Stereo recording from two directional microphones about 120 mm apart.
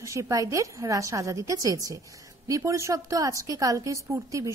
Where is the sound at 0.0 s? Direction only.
25° right (ahead or behind).